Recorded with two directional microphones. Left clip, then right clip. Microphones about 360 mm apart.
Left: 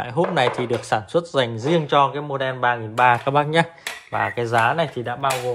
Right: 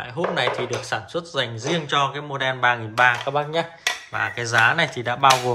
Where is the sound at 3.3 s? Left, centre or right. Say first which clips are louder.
Left 5 dB; left.